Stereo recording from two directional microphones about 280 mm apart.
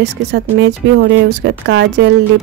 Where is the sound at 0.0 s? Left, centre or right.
Right.